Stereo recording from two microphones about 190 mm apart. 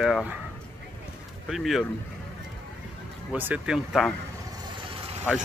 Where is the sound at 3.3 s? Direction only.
10° right (ahead or behind).